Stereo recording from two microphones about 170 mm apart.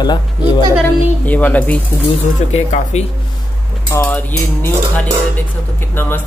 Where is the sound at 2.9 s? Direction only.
40° left (ahead or behind).